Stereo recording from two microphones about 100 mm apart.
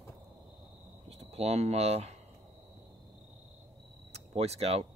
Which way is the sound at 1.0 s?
90° right.